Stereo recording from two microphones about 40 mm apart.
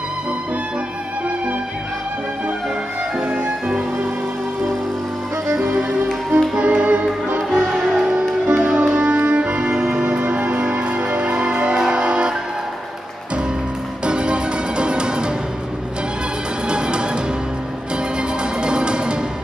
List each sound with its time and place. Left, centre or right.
3.2 s music: right
6.5 s music: right
14.0 s music: right
16.6 s music: right
18.4 s music: right